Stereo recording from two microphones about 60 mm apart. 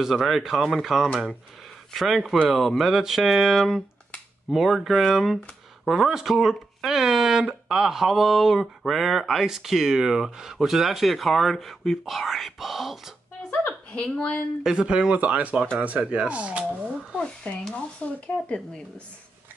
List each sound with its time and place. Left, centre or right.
0.0 s speech: centre
13.5 s a sound: centre
14.6 s speech: centre
17.2 s speech: centre